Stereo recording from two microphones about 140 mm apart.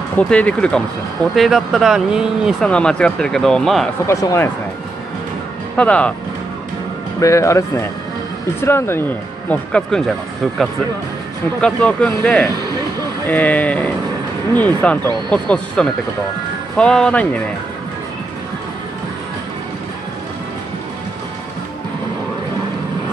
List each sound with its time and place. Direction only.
0.2 s speech: 10° left (ahead or behind)
4.1 s speech: 20° left (ahead or behind)
5.8 s speech: 10° left (ahead or behind)
7.2 s speech: 20° left (ahead or behind); by 10.1 s 5° left (ahead or behind)
11.6 s speech: 10° left (ahead or behind)